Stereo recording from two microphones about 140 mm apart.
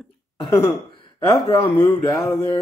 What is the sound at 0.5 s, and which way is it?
Gasp, 35° left (ahead or behind).